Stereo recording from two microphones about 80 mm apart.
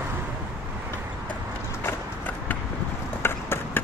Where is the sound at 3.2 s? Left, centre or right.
Left.